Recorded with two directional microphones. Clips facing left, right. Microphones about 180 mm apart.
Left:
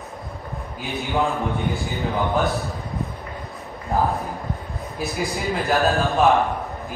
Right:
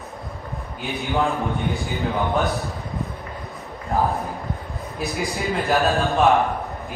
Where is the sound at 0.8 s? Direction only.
Centre (ahead or behind).